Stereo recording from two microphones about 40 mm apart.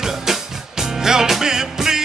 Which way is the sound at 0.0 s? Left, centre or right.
Centre.